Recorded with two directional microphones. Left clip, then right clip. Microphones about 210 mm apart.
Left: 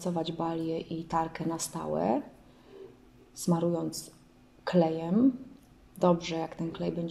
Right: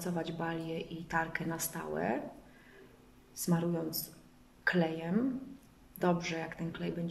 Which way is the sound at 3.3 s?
20° left (ahead or behind).